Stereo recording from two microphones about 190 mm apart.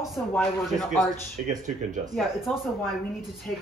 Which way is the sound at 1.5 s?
40° right (ahead or behind).